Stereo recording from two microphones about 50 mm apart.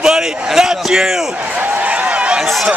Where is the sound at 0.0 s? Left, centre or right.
Centre.